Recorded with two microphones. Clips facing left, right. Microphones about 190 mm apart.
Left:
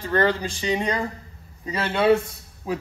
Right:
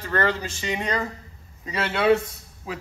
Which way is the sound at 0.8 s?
10° left (ahead or behind).